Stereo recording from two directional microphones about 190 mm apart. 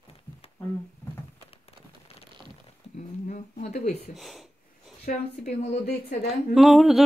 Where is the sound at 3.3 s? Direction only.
40° left (ahead or behind).